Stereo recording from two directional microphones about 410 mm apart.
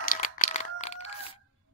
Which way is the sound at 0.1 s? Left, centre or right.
Centre.